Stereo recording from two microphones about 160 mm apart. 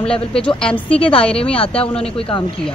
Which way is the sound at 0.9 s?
35° left (ahead or behind).